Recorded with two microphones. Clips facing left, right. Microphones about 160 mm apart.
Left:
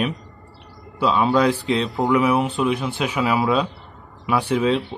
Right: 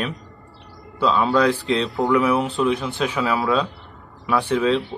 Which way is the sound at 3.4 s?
20° left (ahead or behind).